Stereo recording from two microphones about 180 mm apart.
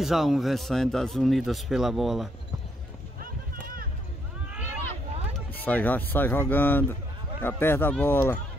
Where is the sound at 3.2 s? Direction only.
50° right (ahead or behind).